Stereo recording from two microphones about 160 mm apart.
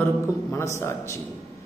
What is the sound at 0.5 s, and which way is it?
Speech, 15° left (ahead or behind).